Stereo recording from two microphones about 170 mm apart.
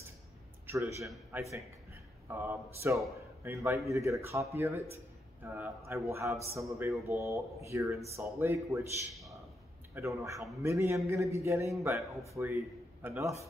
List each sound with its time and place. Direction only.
0.7 s a man's voice: 20° right (ahead or behind)
9.9 s a man's voice: 15° right (ahead or behind)